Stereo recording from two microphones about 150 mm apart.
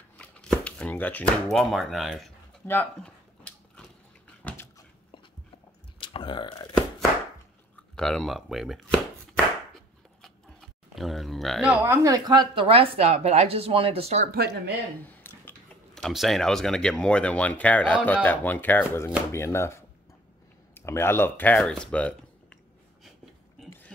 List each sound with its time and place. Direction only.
0.2 s speech: 5° left (ahead or behind)
2.6 s a sound: 10° left (ahead or behind)
5.9 s burping: 30° left (ahead or behind)
7.9 s speech: 5° left (ahead or behind)
10.2 s a sound: centre (ahead or behind)
11.8 s speech: 20° right (ahead or behind); by 14.3 s 45° right (ahead or behind)
14.3 s speech: 90° right
15.0 s a sound: 15° left (ahead or behind)
16.0 s speech: centre (ahead or behind)